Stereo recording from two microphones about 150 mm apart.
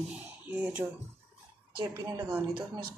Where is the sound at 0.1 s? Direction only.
10° right (ahead or behind).